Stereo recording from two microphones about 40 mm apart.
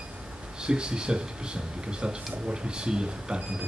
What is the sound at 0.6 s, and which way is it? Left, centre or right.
Speech, right.